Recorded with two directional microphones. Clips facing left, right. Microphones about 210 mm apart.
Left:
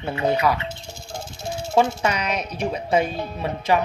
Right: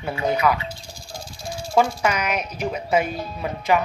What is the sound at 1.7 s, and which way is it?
Speech, 25° left (ahead or behind).